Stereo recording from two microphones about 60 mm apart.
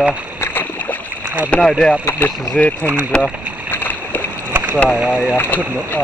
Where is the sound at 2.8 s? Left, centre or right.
Right.